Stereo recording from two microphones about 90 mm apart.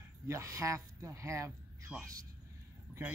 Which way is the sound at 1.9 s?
10° right (ahead or behind).